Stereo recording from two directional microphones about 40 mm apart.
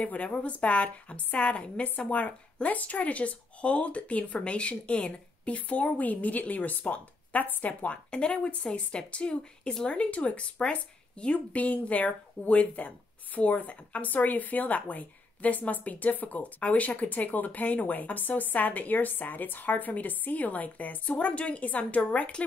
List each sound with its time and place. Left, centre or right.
0.0 s speech: left
2.0 s speech: left
5.6 s speech: left
9.8 s speech: left
11.3 s speech: left